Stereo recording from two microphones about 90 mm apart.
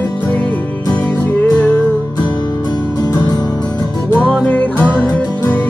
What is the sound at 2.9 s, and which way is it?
Music, 50° left (ahead or behind).